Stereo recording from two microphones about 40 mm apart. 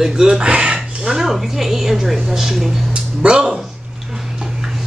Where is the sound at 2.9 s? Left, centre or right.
Right.